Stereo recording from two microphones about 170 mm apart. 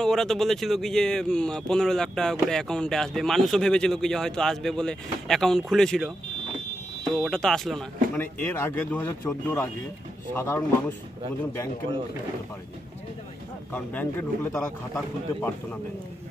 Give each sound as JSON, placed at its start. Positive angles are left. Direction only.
{"t": 0.0, "sound": "a man's voice", "side_deg": 5}
{"t": 13.7, "sound": "a man's voice", "side_deg": 10}